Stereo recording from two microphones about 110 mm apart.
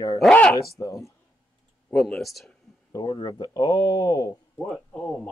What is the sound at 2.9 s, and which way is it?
Speech, 40° left (ahead or behind).